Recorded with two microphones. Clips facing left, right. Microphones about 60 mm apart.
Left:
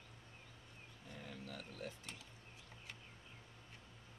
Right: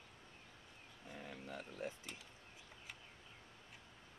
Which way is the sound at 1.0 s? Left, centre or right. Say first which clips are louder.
Right 2 dB; centre.